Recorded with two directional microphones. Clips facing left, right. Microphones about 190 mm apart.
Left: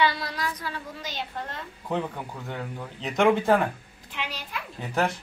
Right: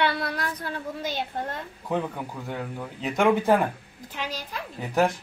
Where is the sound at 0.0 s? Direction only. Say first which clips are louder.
Even; 60° right (ahead or behind).